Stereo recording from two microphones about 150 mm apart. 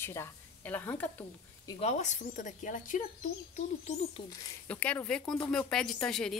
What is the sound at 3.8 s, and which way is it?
Speech, 50° left (ahead or behind).